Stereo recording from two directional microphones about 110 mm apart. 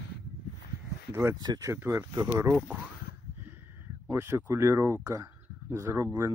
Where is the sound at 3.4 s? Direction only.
20° right (ahead or behind).